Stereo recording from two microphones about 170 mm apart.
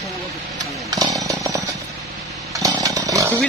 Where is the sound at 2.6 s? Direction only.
20° right (ahead or behind).